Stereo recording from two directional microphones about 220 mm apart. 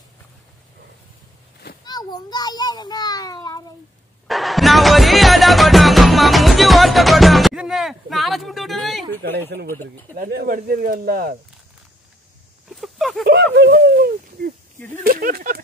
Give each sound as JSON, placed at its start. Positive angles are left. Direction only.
{"t": 1.9, "sound": "a child's voice", "side_deg": 20}
{"t": 4.3, "sound": "music", "side_deg": 0}
{"t": 10.1, "sound": "speech", "side_deg": -40}
{"t": 12.6, "sound": "a sound", "side_deg": 0}
{"t": 13.2, "sound": "speech", "side_deg": -50}